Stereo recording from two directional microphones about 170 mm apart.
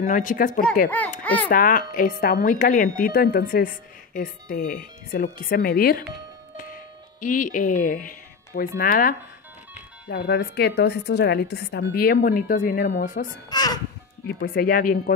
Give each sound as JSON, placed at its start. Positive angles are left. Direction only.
{"t": 0.0, "sound": "speech", "side_deg": 50}
{"t": 0.8, "sound": "speech", "side_deg": 10}
{"t": 1.5, "sound": "a woman's voice", "side_deg": 55}
{"t": 6.5, "sound": "music", "side_deg": 50}
{"t": 8.5, "sound": "a woman's voice", "side_deg": 60}
{"t": 10.0, "sound": "a woman's voice", "side_deg": 75}
{"t": 13.0, "sound": "speech", "side_deg": 50}
{"t": 13.5, "sound": "a child's voice", "side_deg": 25}
{"t": 14.2, "sound": "a woman's voice", "side_deg": 60}